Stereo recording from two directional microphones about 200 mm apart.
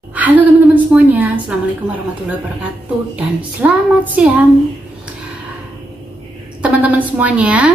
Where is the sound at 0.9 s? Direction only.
10° right (ahead or behind).